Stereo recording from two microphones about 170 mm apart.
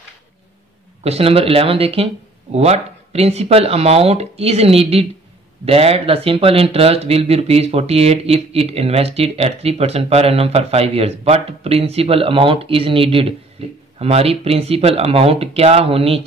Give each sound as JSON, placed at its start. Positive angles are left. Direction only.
{"t": 1.0, "sound": "speech", "side_deg": -35}